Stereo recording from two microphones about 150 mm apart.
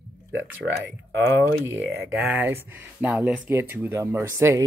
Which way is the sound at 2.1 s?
15° right (ahead or behind).